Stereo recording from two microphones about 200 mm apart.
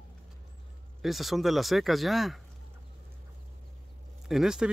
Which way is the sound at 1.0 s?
Centre (ahead or behind).